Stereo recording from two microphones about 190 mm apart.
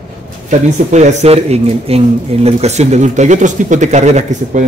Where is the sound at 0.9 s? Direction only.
35° right (ahead or behind).